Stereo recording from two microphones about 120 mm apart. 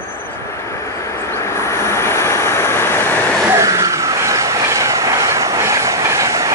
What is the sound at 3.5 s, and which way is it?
Vehicle, 25° right (ahead or behind).